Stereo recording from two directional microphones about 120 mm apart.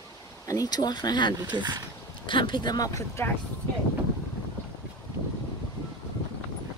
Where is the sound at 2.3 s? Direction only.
45° left (ahead or behind); by 3.3 s 25° left (ahead or behind).